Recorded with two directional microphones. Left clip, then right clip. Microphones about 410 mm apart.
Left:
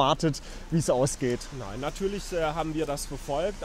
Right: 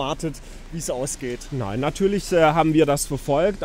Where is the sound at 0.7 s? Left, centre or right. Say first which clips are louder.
Left 2 dB; left.